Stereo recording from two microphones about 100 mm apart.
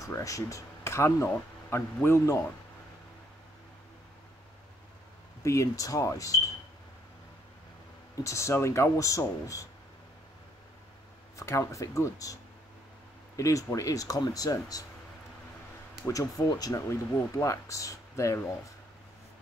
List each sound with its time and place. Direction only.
0.0 s a man's voice: 35° left (ahead or behind)
5.4 s speech: 30° left (ahead or behind)
8.2 s speech: 30° left (ahead or behind)
11.3 s speech: 30° left (ahead or behind)
13.4 s speech: 30° left (ahead or behind)
16.1 s speech: 35° left (ahead or behind)